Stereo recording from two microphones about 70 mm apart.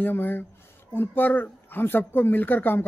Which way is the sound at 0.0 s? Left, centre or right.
Left.